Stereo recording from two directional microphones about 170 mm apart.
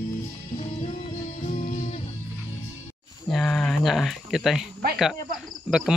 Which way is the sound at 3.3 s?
Centre (ahead or behind).